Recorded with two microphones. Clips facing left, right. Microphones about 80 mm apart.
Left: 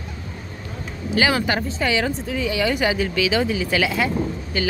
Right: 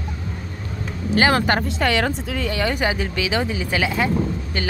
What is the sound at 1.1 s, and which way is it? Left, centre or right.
Speech, right.